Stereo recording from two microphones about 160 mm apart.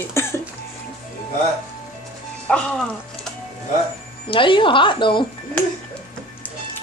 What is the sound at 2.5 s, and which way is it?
Speech, 5° left (ahead or behind).